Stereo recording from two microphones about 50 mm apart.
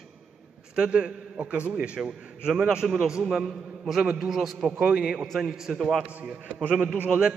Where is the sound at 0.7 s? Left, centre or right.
Centre.